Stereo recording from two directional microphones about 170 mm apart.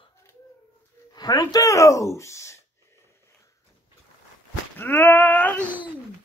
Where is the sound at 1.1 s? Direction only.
25° left (ahead or behind).